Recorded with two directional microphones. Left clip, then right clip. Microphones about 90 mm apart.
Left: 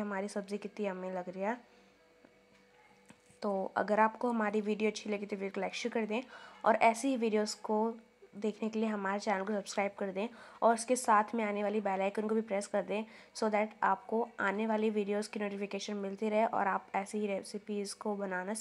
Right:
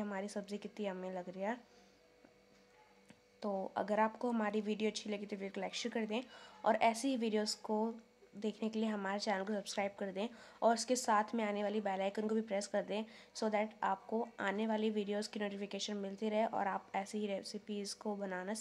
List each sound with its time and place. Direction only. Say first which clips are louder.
0.1 s a woman's voice: left 5 dB; 20° left (ahead or behind)
3.3 s a woman's voice: left 5 dB; 35° left (ahead or behind)